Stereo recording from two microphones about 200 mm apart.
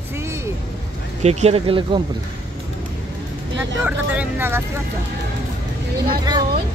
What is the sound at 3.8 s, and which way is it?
Speech, 10° right (ahead or behind).